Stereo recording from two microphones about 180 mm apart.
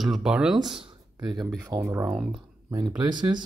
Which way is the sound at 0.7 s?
25° right (ahead or behind).